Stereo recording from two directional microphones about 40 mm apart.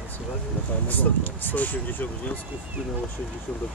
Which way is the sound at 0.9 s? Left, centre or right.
Left.